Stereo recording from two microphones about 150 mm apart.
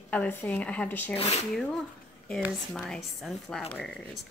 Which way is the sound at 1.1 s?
45° left (ahead or behind).